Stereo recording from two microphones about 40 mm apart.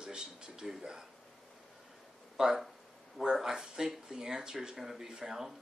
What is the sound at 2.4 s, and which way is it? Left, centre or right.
Speech, right.